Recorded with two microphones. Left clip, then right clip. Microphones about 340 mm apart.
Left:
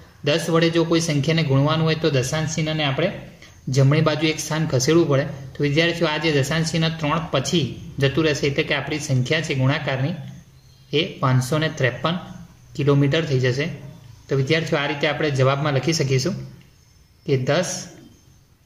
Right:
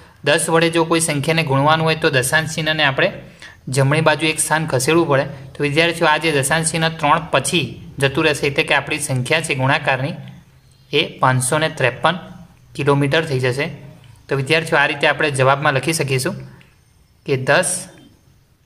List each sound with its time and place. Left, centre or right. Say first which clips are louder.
0.4 s speech: right 1 dB; right